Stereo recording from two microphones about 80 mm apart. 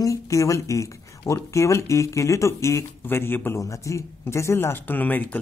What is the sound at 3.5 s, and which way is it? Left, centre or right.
Speech, left.